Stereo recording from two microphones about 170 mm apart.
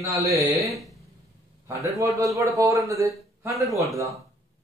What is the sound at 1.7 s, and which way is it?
Speech, 20° right (ahead or behind).